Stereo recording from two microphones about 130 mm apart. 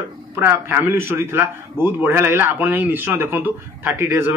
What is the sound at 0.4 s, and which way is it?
A man's voice, 15° right (ahead or behind).